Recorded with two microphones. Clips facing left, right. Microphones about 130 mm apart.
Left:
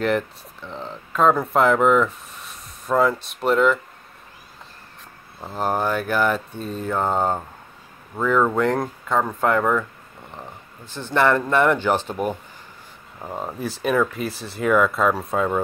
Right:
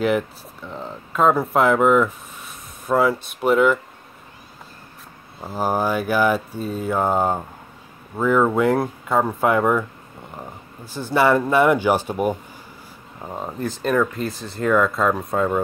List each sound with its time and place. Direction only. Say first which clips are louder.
0.0 s speech: right 2 dB; 5° right (ahead or behind)
5.4 s speech: right 1 dB; 5° right (ahead or behind)
13.2 s speech: right 1 dB; centre (ahead or behind)